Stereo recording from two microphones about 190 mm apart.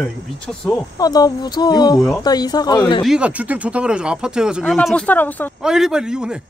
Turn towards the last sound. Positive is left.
turn(degrees=-5)  # may be behind; listen again after turning